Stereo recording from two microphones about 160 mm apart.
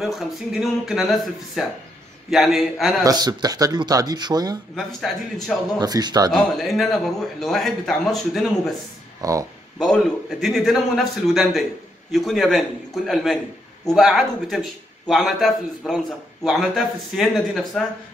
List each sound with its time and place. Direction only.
0.0 s a man's voice: centre (ahead or behind)
3.0 s speech: 25° right (ahead or behind)
4.7 s a man's voice: centre (ahead or behind)
5.8 s speech: 25° right (ahead or behind)
6.3 s a man's voice: centre (ahead or behind)
9.2 s speech: 20° right (ahead or behind)
9.8 s a man's voice: centre (ahead or behind)